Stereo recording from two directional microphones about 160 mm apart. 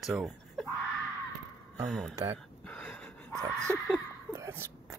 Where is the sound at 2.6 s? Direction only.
10° left (ahead or behind).